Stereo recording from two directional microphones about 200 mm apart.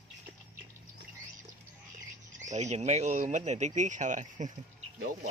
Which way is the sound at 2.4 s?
35° right (ahead or behind).